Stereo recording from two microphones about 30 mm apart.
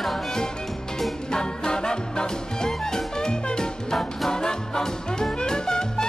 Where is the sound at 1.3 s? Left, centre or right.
Left.